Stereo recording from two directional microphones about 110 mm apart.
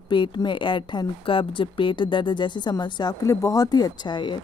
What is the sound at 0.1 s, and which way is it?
Speech, 45° left (ahead or behind).